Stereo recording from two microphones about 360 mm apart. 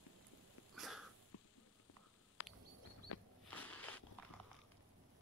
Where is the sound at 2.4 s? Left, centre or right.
Left.